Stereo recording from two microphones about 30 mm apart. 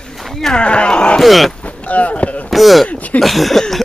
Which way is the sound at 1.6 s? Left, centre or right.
Left.